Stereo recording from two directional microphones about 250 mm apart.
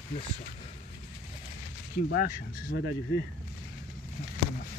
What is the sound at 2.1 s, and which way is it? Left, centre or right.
Speech, left.